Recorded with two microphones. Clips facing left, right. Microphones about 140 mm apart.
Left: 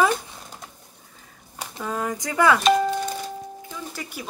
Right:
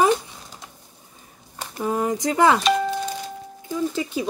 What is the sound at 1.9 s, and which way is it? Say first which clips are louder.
Speech: right 5 dB; 20° right (ahead or behind).